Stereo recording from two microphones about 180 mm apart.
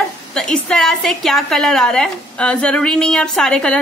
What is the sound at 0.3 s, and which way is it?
A woman's voice, 5° left (ahead or behind).